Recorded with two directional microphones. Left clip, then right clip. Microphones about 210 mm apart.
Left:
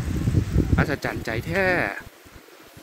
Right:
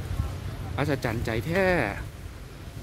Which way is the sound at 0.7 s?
Centre (ahead or behind).